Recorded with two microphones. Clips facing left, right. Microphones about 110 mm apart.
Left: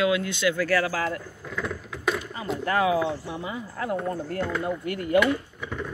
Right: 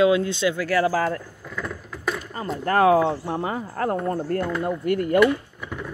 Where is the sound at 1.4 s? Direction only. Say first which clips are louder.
Left 1 dB; centre (ahead or behind).